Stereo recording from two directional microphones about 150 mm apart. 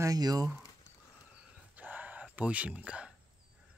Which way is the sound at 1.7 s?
10° right (ahead or behind).